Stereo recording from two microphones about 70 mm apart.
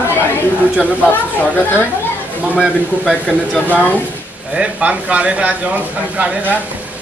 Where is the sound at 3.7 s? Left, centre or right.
Left.